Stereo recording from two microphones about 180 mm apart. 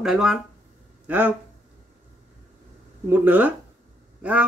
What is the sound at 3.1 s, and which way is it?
Speech, 10° right (ahead or behind).